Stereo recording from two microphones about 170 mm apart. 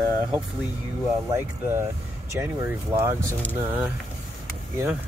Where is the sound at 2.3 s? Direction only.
15° right (ahead or behind).